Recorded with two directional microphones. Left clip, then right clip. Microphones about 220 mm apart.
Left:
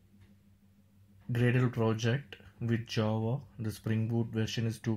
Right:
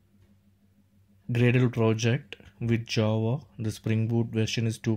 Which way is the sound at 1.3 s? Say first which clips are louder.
Right 6 dB; 30° right (ahead or behind).